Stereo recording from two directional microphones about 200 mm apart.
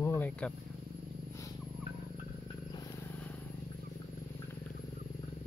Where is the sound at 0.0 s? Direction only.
10° left (ahead or behind).